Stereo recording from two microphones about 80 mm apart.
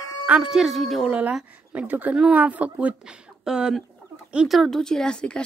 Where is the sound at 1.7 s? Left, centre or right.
Right.